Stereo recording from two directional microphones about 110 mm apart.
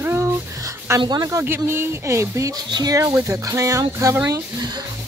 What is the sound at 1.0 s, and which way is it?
Speech, 35° right (ahead or behind).